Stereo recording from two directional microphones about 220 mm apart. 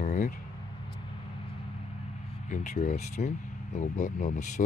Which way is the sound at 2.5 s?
35° left (ahead or behind).